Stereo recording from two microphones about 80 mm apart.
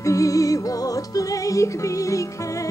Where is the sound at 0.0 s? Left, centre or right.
Left.